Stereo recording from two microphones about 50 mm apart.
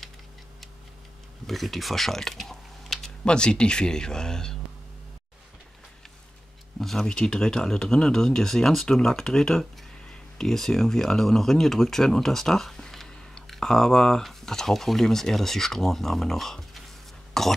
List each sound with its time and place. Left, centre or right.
1.5 s speech: centre
3.3 s speech: centre
6.8 s speech: centre
17.3 s throat clearing: centre